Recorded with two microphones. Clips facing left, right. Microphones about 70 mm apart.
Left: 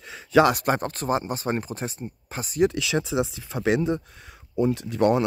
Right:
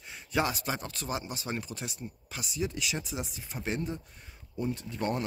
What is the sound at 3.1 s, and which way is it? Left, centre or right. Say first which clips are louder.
Speech: left 12 dB; left.